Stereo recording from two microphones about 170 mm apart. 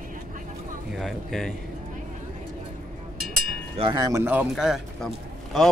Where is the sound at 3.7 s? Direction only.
30° right (ahead or behind); by 5.7 s centre (ahead or behind).